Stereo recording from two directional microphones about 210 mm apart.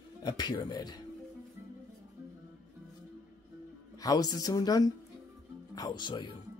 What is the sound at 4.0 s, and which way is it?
Speech, 15° left (ahead or behind).